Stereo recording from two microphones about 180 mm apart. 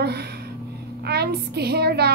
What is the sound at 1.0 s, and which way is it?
A woman's voice, 65° right (ahead or behind).